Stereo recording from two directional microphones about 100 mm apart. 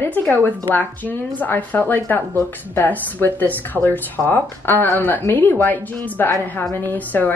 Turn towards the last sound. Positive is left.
turn(degrees=20)  # may be behind; listen again after turning